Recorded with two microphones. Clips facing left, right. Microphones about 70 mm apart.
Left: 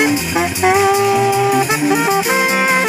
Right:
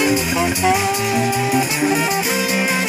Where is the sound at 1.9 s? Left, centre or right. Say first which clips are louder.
Left 5 dB; left.